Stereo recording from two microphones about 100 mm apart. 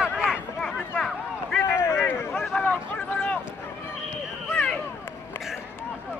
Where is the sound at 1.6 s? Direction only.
30° left (ahead or behind).